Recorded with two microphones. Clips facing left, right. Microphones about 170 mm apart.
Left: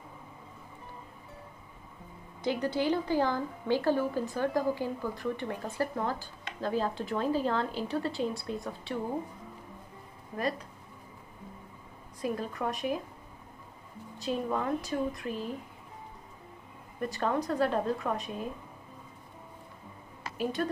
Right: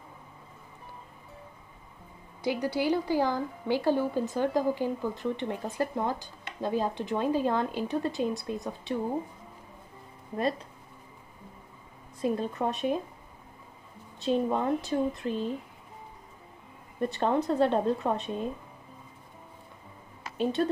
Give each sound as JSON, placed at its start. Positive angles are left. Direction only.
{"t": 2.4, "sound": "speech", "side_deg": -10}
{"t": 12.2, "sound": "a woman's voice", "side_deg": -25}
{"t": 14.2, "sound": "a woman's voice", "side_deg": -25}
{"t": 17.0, "sound": "a woman's voice", "side_deg": -25}
{"t": 20.3, "sound": "a woman's voice", "side_deg": -25}